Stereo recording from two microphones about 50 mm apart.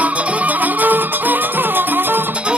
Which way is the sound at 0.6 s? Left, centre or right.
Right.